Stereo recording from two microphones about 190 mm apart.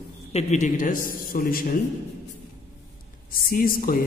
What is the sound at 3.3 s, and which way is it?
Speech, 50° left (ahead or behind).